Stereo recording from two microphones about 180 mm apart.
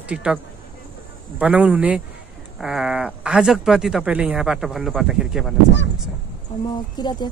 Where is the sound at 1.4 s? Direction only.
5° right (ahead or behind).